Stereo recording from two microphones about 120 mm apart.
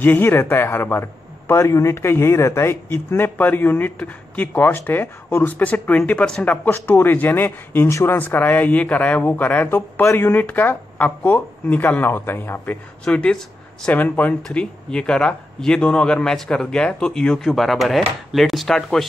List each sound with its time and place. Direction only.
0.0 s speech: 15° left (ahead or behind)